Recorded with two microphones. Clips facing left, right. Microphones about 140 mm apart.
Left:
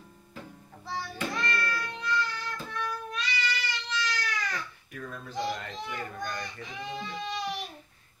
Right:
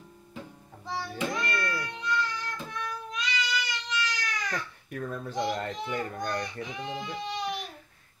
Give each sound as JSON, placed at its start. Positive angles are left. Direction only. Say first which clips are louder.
{"t": 0.8, "sound": "music", "louder": "right 2 dB", "side_deg": -15}
{"t": 4.9, "sound": "a child's voice", "louder": "right 4 dB", "side_deg": -45}
{"t": 6.4, "sound": "speech", "louder": "right 3 dB", "side_deg": -15}